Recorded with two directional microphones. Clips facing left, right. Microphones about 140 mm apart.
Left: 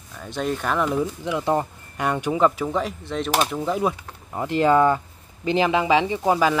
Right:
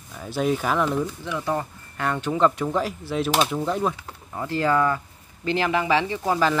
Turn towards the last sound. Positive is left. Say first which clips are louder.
# left 3 dB
turn(degrees=15)  # may be behind; listen again after turning